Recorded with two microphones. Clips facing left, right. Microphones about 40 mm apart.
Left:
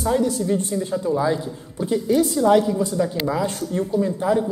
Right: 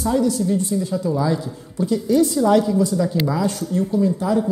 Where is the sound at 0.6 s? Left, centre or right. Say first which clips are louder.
Right 2 dB; left.